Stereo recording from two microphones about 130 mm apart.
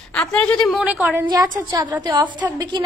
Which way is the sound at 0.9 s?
10° right (ahead or behind).